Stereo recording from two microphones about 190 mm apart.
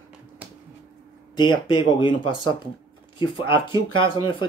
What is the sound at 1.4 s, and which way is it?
Speech, 25° left (ahead or behind).